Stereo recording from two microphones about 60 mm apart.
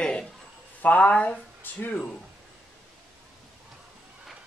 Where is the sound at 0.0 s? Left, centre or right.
Centre.